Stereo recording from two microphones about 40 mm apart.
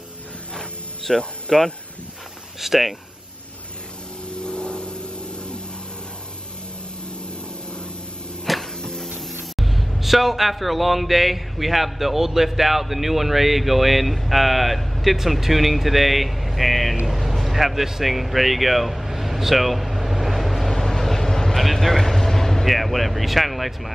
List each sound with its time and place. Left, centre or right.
1.1 s speech: centre
2.6 s speech: centre
4.4 s vehicle: left
8.5 s a sound: centre
8.8 s a sound: centre
9.6 s speech: centre
17.0 s vehicle: centre